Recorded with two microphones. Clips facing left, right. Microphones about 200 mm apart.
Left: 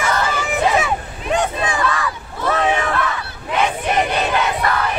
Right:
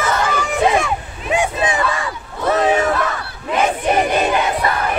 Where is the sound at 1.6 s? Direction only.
25° right (ahead or behind).